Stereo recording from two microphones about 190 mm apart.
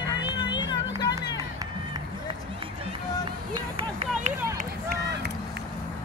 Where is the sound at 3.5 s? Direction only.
30° right (ahead or behind).